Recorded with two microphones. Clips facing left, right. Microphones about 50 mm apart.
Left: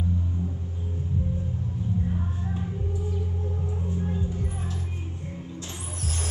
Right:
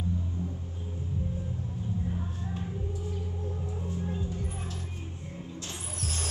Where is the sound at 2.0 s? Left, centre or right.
Left.